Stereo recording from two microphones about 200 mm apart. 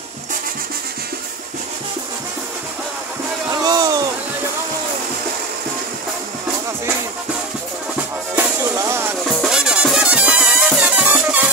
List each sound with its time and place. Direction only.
3.6 s a sound: 20° right (ahead or behind)
8.4 s music: 15° right (ahead or behind)
9.3 s music: 5° right (ahead or behind)